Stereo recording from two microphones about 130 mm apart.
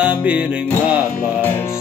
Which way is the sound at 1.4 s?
15° left (ahead or behind).